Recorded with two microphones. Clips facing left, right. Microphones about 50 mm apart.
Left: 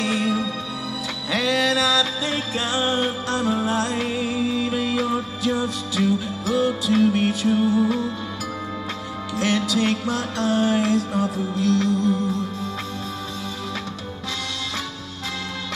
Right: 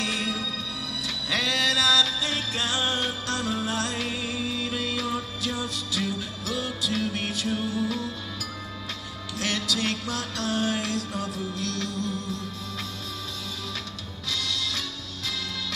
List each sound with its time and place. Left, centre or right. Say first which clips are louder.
0.0 s music: left 7 dB; centre
9.4 s music: left 7 dB; centre